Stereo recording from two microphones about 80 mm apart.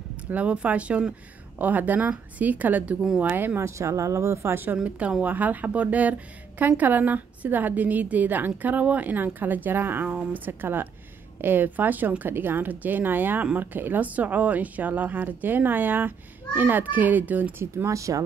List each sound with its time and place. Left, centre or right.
0.3 s speech: centre; by 4.6 s right
4.7 s speech: centre
17.8 s speech: right